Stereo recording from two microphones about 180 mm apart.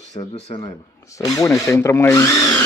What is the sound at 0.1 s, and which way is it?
Speech, 35° left (ahead or behind).